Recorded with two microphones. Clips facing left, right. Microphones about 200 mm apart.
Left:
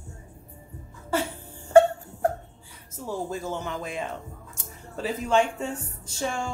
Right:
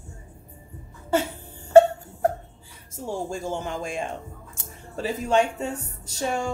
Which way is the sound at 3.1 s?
30° right (ahead or behind).